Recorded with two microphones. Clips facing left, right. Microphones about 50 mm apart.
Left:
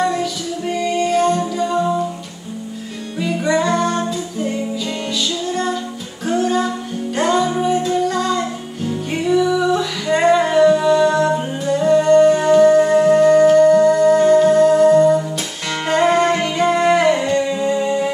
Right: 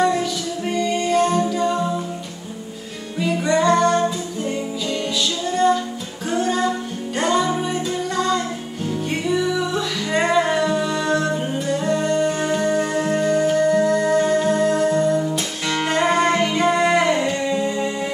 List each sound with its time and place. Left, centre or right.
0.7 s music: centre
3.2 s music: centre
6.2 s music: centre